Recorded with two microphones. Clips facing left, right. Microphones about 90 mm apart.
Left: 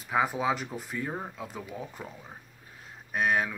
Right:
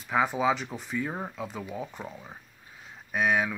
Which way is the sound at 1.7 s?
20° right (ahead or behind).